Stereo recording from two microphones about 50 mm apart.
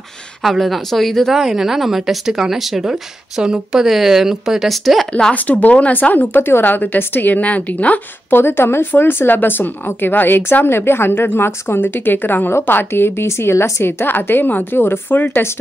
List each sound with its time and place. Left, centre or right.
0.4 s a woman's voice: centre
5.3 s speech: left
8.3 s speech: left
13.8 s speech: left